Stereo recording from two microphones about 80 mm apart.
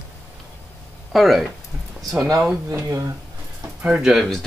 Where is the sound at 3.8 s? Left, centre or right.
Centre.